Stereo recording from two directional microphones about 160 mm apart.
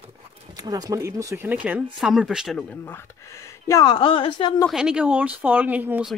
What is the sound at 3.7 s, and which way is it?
A man's voice, 25° left (ahead or behind).